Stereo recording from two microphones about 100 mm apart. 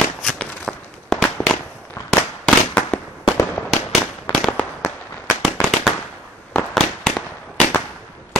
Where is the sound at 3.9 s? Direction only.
Centre (ahead or behind).